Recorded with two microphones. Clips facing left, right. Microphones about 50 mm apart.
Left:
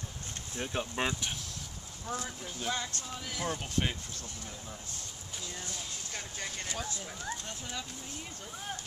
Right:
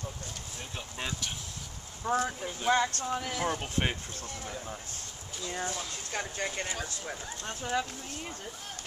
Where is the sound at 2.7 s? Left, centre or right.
Right.